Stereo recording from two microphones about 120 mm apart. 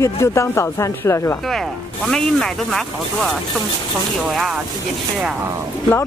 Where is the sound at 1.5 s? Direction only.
5° left (ahead or behind).